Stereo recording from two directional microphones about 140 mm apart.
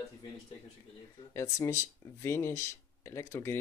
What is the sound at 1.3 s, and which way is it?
Speech, 20° left (ahead or behind).